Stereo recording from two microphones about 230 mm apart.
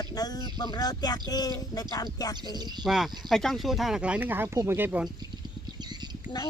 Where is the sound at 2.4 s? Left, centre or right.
Centre.